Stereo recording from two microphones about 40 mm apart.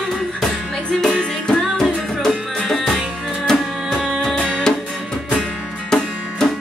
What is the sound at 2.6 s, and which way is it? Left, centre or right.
Music, centre.